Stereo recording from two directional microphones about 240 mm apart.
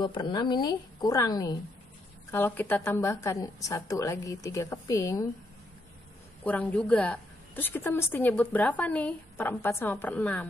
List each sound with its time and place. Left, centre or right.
0.0 s a woman's voice: centre
6.4 s a woman's voice: centre